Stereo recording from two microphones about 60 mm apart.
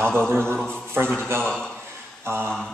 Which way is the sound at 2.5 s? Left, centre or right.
Centre.